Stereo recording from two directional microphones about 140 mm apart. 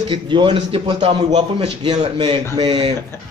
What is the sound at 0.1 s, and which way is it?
A man's voice, 35° right (ahead or behind).